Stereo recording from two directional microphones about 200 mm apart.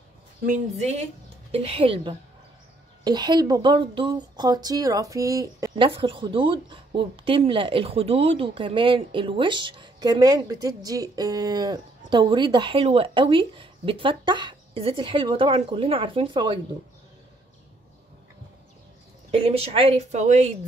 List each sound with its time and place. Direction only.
0.5 s a woman's voice: 35° right (ahead or behind); by 5.9 s 15° right (ahead or behind)
5.9 s speech: 25° right (ahead or behind)
19.3 s speech: 30° right (ahead or behind)